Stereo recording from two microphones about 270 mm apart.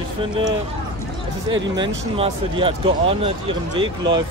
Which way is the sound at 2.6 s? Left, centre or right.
Centre.